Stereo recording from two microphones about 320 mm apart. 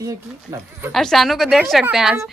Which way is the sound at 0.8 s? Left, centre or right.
Centre.